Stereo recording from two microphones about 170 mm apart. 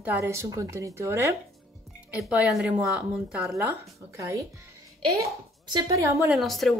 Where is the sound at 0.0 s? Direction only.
15° right (ahead or behind).